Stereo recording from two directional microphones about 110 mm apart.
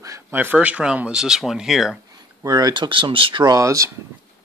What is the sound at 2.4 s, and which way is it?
Speech, 35° right (ahead or behind).